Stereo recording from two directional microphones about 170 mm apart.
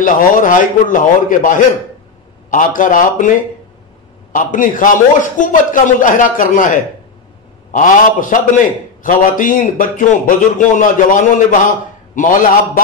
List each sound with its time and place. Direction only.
0.0 s a man's voice: 50° left (ahead or behind)